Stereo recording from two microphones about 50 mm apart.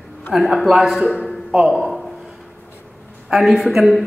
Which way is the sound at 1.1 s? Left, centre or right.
Left.